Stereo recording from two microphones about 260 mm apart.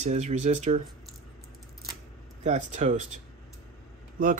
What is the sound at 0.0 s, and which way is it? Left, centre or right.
Speech, right.